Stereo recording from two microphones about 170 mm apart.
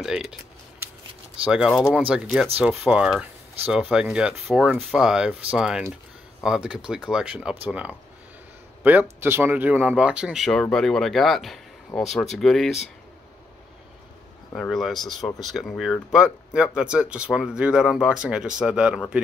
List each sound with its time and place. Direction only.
0.0 s typing: 5° right (ahead or behind)
1.4 s speech: 5° right (ahead or behind)
14.5 s speech: centre (ahead or behind)